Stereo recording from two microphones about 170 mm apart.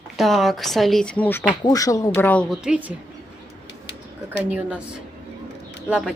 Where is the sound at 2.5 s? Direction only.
5° right (ahead or behind).